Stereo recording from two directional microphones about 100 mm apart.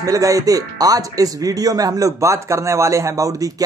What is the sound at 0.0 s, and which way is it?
Speech, 35° right (ahead or behind).